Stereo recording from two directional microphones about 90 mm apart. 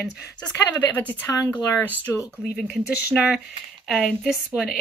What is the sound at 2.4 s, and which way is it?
Speech, 5° left (ahead or behind).